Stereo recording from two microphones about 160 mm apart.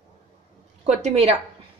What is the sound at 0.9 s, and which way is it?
Speech, 45° right (ahead or behind).